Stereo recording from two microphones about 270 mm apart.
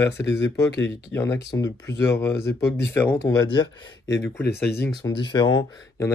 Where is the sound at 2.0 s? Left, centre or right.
Centre.